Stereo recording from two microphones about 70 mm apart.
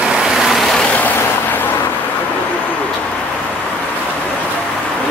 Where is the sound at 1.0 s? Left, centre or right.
Left.